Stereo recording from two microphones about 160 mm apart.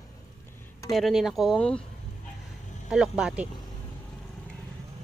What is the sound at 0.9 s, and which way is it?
Speech, centre (ahead or behind).